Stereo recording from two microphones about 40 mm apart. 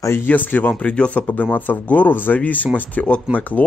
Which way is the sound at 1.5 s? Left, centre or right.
Left.